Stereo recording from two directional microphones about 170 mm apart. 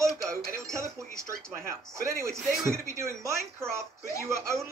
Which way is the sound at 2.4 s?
5° right (ahead or behind).